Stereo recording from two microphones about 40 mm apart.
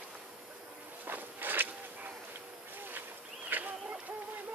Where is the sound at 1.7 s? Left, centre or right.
Right.